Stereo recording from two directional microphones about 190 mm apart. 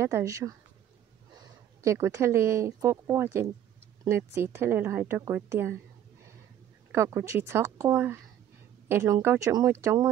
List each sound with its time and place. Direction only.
0.0 s a woman's voice: 15° right (ahead or behind)
6.9 s a woman's voice: 15° right (ahead or behind)